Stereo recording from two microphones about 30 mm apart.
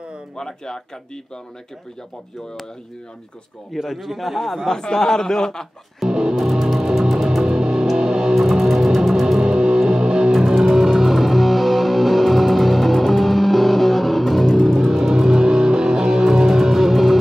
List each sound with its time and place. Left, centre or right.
0.4 s speech: centre
3.7 s speech: centre
4.1 s speech: centre
4.7 s a man's voice: left
6.0 s music: centre
6.6 s music: centre; by 8.4 s right
8.4 s music: centre
9.4 s music: right
10.6 s music: centre
15.1 s music: centre
16.3 s music: centre